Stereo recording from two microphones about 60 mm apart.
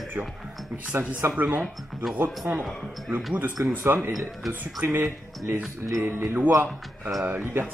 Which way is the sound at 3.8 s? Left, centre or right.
Right.